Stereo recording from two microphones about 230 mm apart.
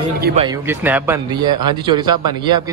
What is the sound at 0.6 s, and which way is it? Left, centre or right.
A man's voice, centre.